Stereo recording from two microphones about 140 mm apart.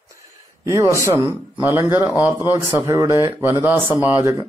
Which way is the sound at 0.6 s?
20° right (ahead or behind).